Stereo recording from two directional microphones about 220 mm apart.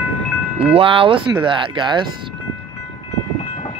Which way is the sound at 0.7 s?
25° right (ahead or behind).